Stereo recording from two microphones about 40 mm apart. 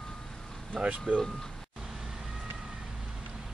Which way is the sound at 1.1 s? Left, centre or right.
Right.